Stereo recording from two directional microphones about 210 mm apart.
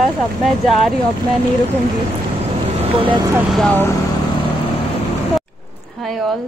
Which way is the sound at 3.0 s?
25° right (ahead or behind).